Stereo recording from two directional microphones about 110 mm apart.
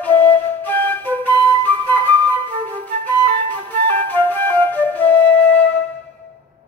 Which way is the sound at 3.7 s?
15° left (ahead or behind).